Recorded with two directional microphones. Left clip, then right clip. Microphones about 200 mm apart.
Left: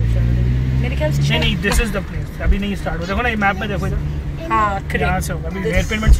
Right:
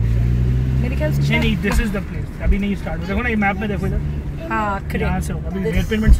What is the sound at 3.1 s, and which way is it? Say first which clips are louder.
Speech: left 2 dB; 50° left (ahead or behind).